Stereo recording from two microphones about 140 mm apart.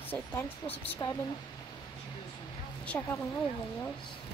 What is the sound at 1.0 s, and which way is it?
Speech, 30° left (ahead or behind).